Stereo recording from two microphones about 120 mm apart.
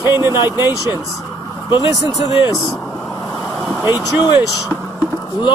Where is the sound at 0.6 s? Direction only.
35° left (ahead or behind).